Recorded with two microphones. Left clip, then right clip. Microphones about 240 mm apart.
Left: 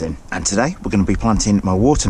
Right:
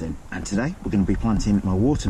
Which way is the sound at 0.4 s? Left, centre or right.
Centre.